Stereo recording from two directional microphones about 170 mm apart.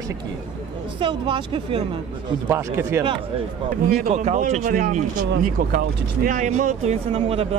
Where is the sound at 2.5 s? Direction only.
15° right (ahead or behind).